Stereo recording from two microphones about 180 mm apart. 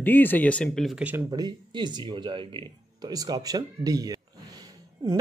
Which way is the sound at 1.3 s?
25° right (ahead or behind).